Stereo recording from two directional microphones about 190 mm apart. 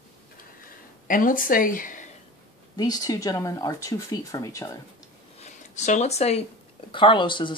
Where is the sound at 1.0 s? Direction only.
45° left (ahead or behind).